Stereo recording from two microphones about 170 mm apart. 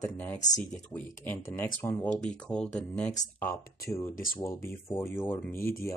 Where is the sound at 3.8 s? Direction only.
15° left (ahead or behind).